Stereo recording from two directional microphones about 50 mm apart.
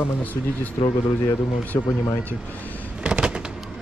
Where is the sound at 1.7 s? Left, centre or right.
Left.